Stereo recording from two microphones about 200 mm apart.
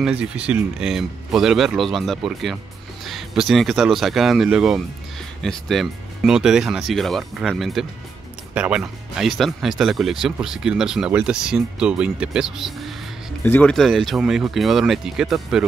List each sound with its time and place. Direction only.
0.2 s speech: 5° right (ahead or behind)